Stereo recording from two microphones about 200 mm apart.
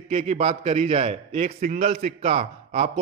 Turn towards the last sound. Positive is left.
turn(degrees=-30)  # may be behind; listen again after turning